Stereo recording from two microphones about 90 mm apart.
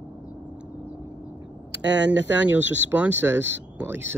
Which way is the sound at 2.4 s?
15° right (ahead or behind).